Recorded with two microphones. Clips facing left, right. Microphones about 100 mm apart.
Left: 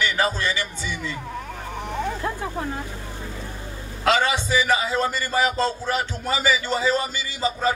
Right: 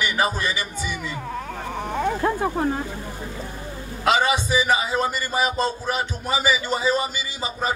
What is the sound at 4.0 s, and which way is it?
A man's voice, 15° right (ahead or behind).